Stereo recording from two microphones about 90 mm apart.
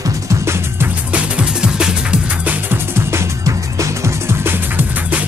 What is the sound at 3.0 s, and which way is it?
Music, 35° right (ahead or behind).